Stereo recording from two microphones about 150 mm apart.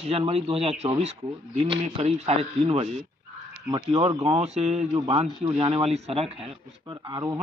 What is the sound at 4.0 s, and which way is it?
Speech, 30° right (ahead or behind).